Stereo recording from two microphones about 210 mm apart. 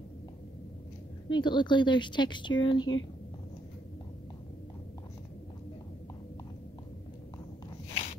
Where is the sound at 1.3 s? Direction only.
20° left (ahead or behind).